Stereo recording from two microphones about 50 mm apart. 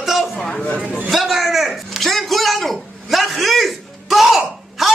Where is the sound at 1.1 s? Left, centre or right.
Centre.